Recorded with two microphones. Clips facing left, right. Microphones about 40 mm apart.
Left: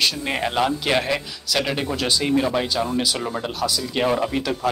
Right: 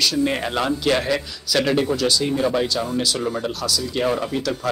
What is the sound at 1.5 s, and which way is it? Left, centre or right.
Speech, centre.